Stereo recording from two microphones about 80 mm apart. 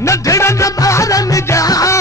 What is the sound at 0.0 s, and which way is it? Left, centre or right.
Music, left.